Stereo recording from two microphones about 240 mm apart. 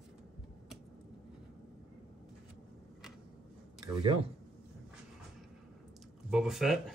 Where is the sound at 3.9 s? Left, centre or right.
Centre.